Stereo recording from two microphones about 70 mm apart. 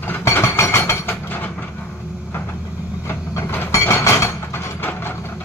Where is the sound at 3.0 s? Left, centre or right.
Left.